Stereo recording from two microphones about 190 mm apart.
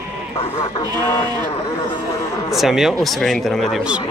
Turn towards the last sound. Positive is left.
turn(degrees=0)  # may be behind; listen again after turning